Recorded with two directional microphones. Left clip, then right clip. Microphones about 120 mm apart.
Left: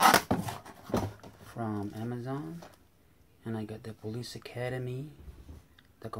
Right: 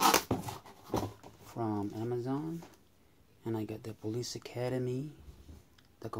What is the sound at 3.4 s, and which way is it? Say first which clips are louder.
Speech: right 2 dB; 40° right (ahead or behind).